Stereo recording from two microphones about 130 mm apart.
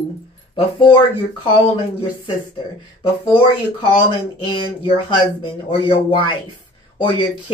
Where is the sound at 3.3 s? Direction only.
40° left (ahead or behind).